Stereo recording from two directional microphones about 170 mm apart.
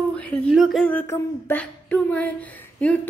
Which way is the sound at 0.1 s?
5° left (ahead or behind).